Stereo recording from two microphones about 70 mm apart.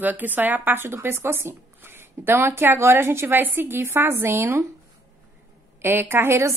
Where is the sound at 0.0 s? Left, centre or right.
Right.